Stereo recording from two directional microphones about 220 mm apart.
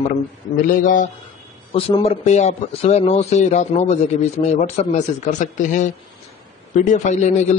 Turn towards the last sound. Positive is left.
turn(degrees=30)  # may be behind; listen again after turning